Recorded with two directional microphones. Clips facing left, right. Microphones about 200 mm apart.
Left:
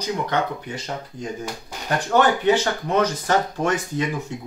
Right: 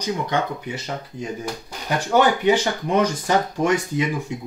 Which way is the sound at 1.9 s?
10° right (ahead or behind).